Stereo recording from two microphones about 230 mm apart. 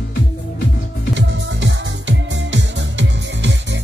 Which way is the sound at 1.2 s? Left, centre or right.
Right.